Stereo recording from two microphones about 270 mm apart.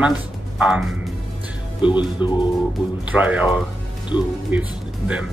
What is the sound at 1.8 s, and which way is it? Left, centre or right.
Speech, centre.